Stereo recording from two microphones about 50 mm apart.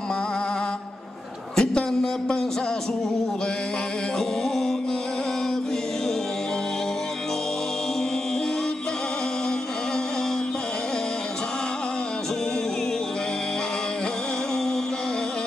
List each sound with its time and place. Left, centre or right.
1.6 s a man's voice: centre